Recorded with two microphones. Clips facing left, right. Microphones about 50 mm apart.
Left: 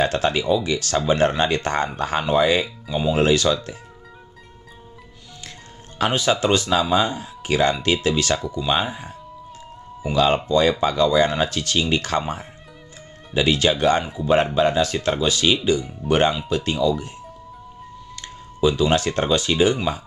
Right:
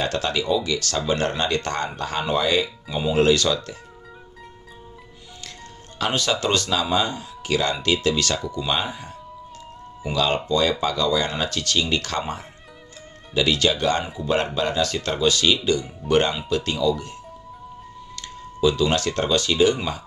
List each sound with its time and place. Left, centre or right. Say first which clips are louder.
0.1 s speech: left 3 dB; left
2.9 s speech: left 1 dB; centre
6.1 s speech: left 3 dB; centre
8.6 s music: left 5 dB; centre
10.1 s speech: left 4 dB; centre